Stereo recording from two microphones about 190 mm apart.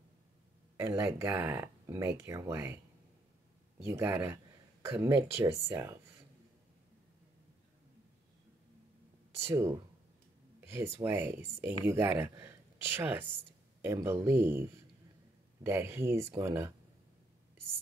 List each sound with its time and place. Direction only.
0.7 s speech: 15° right (ahead or behind)
3.8 s speech: 15° right (ahead or behind)
9.3 s speech: 15° right (ahead or behind)